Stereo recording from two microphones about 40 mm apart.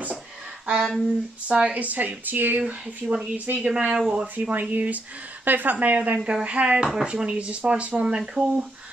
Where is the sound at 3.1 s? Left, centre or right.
Right.